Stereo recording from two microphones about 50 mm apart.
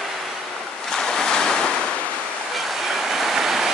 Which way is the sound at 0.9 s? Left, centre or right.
Centre.